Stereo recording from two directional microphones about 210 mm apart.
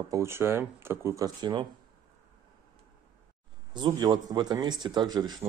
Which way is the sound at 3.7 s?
20° right (ahead or behind).